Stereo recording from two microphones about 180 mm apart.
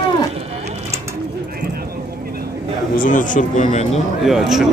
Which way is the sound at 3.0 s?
45° left (ahead or behind).